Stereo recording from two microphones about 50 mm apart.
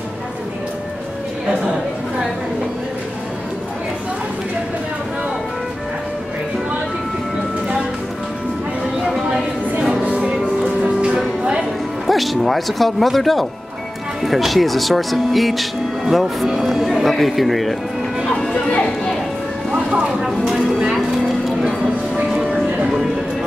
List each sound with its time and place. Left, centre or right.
10.0 s music: right
12.1 s speech: centre
20.1 s speech: centre
21.5 s music: centre